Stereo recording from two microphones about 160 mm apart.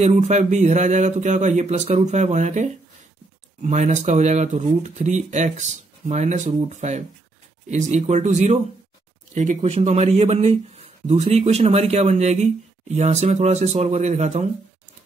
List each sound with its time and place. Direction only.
0.0 s speech: 45° right (ahead or behind)